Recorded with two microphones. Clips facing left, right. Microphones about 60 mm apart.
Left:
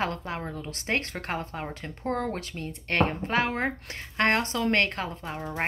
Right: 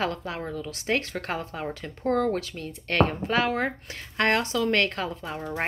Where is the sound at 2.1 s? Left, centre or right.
Centre.